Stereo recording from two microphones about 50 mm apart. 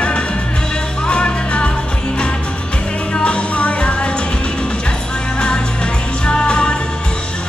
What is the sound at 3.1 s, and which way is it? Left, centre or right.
Music, left.